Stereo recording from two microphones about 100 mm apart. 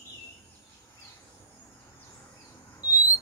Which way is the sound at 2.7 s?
35° left (ahead or behind).